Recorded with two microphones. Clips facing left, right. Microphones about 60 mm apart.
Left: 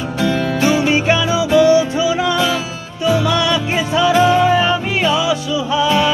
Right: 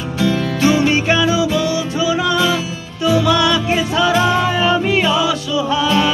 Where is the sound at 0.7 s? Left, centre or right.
Centre.